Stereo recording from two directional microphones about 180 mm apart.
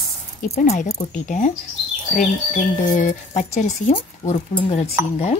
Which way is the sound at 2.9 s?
45° left (ahead or behind).